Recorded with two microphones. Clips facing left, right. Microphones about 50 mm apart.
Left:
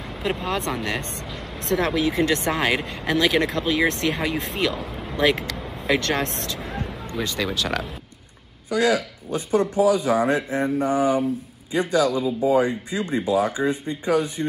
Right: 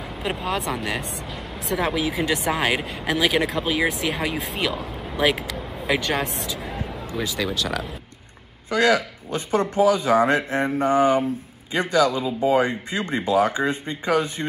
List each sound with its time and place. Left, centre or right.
0.2 s speech: centre
8.6 s a man's voice: right
12.3 s speech: right